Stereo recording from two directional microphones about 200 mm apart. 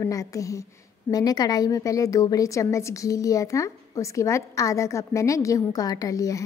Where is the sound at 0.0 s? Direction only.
15° left (ahead or behind).